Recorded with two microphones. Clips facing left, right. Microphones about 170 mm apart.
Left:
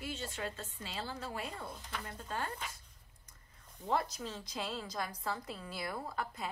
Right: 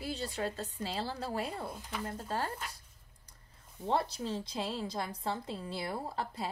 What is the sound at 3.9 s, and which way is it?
A woman's voice, 30° right (ahead or behind).